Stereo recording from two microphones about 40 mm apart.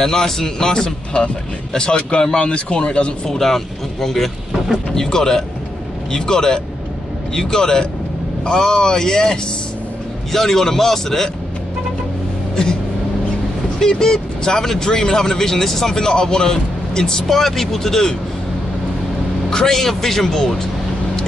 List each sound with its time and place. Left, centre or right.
0.0 s speech: centre
3.3 s speech: centre
13.7 s speech: centre
19.5 s speech: centre